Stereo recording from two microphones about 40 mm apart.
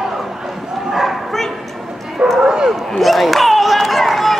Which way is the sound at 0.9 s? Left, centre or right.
Centre.